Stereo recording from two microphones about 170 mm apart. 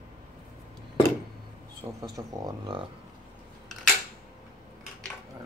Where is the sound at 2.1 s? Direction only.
25° right (ahead or behind).